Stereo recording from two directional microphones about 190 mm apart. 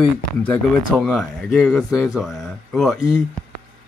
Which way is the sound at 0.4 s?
5° left (ahead or behind).